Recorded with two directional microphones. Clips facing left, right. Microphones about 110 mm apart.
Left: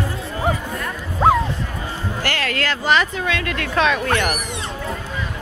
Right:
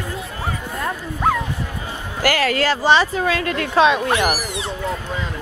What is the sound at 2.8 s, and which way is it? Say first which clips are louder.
Speech: right 2 dB; 30° right (ahead or behind).